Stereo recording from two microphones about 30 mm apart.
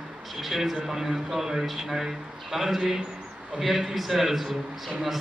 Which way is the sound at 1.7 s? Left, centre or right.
Centre.